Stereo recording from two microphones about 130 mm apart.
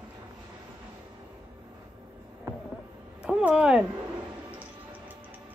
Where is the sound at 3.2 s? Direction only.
5° right (ahead or behind).